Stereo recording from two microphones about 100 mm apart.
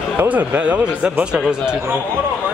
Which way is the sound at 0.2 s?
20° right (ahead or behind).